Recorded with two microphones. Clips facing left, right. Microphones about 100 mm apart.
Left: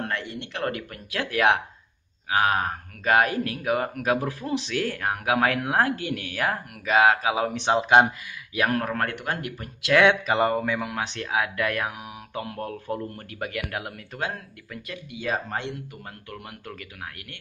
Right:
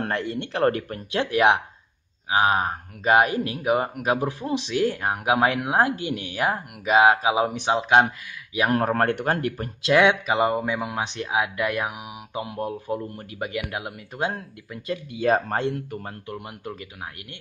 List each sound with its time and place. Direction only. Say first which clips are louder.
0.0 s speech: right 4 dB; 40° right (ahead or behind)
1.1 s speech: right 3 dB; 20° right (ahead or behind)
8.6 s speech: right 5 dB; 35° right (ahead or behind)
9.9 s speech: even; 10° right (ahead or behind); by 15.7 s 40° right (ahead or behind)
16.3 s speech: right 3 dB; 20° right (ahead or behind)